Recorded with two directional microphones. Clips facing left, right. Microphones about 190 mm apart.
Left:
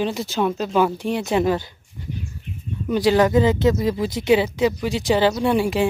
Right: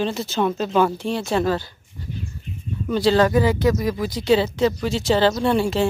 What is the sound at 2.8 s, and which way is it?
Speech, 15° left (ahead or behind).